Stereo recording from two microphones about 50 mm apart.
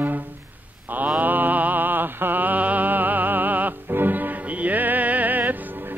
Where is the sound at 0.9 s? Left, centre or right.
Right.